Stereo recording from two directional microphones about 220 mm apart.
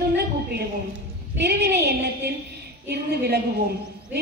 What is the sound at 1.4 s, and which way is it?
Speech, 50° right (ahead or behind).